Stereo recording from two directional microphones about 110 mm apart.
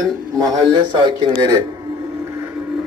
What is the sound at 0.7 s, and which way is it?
Speech, 45° right (ahead or behind).